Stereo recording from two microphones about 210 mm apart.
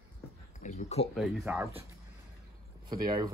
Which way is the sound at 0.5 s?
35° left (ahead or behind).